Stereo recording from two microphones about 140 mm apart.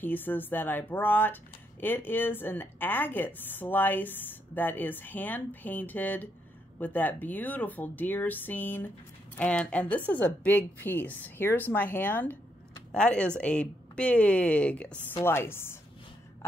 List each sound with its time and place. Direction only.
0.0 s speech: 15° left (ahead or behind)